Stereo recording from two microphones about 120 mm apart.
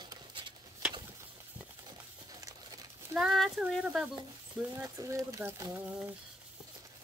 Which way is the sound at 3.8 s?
5° right (ahead or behind).